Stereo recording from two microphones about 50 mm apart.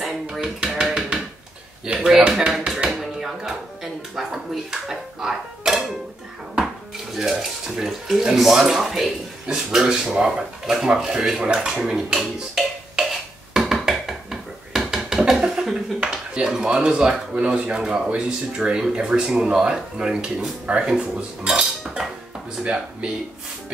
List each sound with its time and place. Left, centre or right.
0.3 s speech: centre
2.0 s speech: centre
2.5 s tap: centre
2.9 s speech: centre
7.2 s speech: centre
11.4 s dishes: centre
13.8 s a sound: centre
19.4 s speech: centre
20.9 s cutlery: centre
22.6 s speech: right